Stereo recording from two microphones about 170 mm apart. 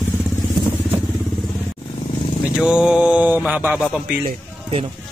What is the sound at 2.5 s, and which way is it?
Mantra, 5° right (ahead or behind).